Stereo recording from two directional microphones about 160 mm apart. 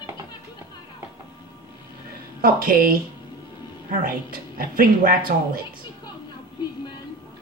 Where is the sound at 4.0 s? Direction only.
65° right (ahead or behind).